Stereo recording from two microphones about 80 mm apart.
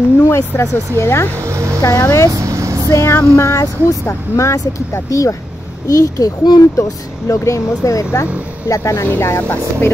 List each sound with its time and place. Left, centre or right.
0.2 s speech: left
2.3 s vehicle: right
2.9 s a child's voice: left
6.8 s speech: left